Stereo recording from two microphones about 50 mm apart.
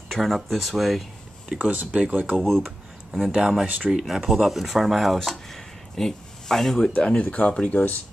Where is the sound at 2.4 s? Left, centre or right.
Centre.